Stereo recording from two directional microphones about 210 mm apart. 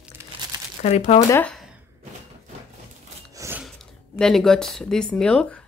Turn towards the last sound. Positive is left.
turn(degrees=5)  # may be behind; listen again after turning